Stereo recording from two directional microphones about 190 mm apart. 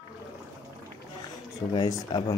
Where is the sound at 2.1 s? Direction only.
25° left (ahead or behind).